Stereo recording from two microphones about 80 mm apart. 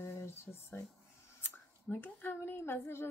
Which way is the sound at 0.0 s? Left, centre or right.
Left.